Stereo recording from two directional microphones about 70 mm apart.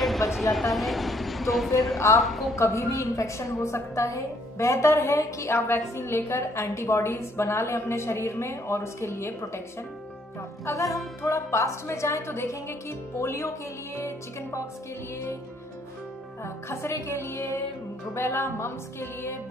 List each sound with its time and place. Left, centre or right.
0.0 s vehicle: centre
0.3 s speech: centre
2.0 s a woman's voice: left
2.2 s speech: centre
2.5 s a woman's voice: left
10.6 s a woman's voice: left
16.4 s a woman's voice: left